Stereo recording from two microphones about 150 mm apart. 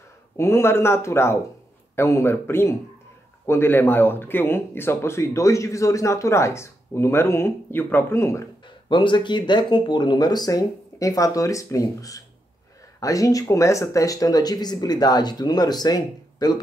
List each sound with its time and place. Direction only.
0.4 s speech: 15° left (ahead or behind)
8.8 s speech: 30° left (ahead or behind)